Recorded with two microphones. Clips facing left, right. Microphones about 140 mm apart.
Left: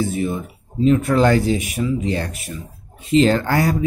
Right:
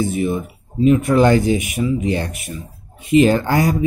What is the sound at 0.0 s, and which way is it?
Speech, 15° right (ahead or behind).